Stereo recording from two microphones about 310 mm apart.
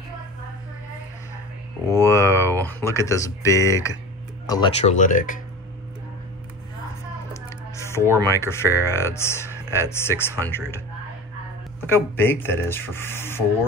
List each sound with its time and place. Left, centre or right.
1.9 s speech: centre; by 5.4 s left
7.4 s typing: centre
8.3 s speech: centre
11.8 s speech: centre